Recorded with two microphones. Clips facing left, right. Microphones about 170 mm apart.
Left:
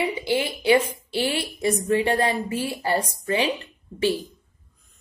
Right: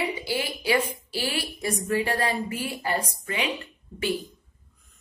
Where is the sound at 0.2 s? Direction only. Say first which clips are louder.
Left 5 dB; 25° left (ahead or behind).